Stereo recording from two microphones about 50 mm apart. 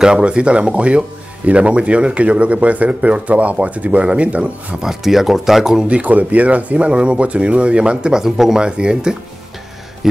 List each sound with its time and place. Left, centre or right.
0.0 s speech: centre
4.8 s speech: centre
5.9 s speech: right; by 8.6 s centre
8.6 s speech: centre